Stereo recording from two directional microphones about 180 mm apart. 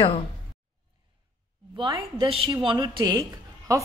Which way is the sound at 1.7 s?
25° right (ahead or behind).